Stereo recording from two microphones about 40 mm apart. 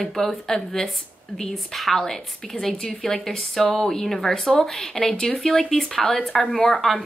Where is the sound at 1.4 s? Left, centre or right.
Centre.